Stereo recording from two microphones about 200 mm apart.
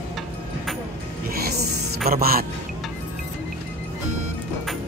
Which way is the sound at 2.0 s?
50° right (ahead or behind).